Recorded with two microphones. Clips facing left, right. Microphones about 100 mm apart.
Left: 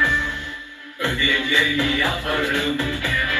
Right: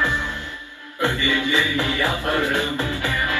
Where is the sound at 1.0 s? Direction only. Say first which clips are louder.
Right 2 dB; 15° right (ahead or behind).